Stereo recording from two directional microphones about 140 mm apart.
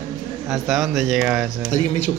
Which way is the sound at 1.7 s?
60° left (ahead or behind).